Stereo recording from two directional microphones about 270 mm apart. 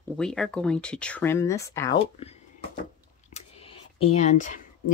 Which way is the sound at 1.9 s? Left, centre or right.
Left.